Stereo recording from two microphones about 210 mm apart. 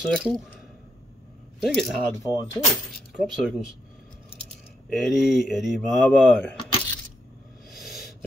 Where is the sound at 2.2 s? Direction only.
15° left (ahead or behind).